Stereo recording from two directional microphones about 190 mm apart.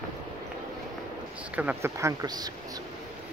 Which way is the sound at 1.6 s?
10° right (ahead or behind).